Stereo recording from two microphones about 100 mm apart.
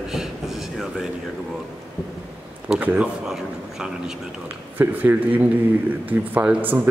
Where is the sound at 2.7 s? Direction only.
15° right (ahead or behind).